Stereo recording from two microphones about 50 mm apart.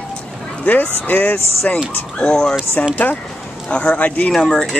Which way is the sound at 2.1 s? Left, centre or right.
Centre.